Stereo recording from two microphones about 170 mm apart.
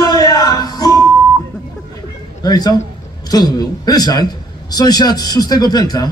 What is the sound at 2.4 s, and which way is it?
A man's voice, 25° left (ahead or behind).